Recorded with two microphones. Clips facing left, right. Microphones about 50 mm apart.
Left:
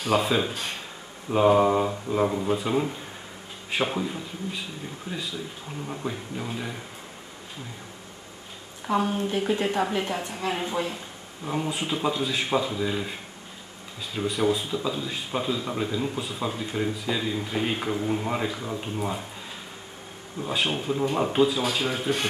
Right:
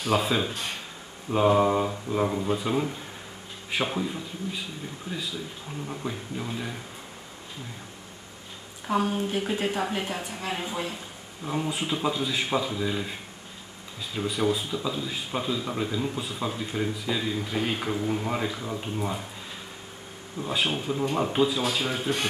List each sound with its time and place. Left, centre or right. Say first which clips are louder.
0.0 s speech: left 2 dB; centre
5.1 s speech: left 1 dB; left
5.9 s speech: left 2 dB; centre
8.8 s speech: left 1 dB; centre
20.3 s speech: left 1 dB; centre